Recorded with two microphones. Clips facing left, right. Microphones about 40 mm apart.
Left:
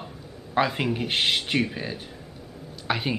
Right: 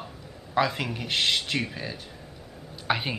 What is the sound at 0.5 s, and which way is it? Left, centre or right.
Speech, centre.